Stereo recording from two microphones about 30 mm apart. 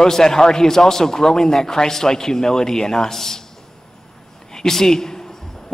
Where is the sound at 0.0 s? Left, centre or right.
Centre.